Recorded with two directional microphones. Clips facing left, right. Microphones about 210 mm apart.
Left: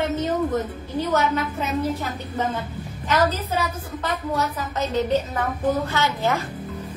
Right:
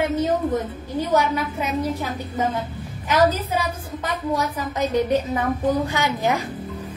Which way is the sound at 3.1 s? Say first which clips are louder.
Right 3 dB; 15° right (ahead or behind).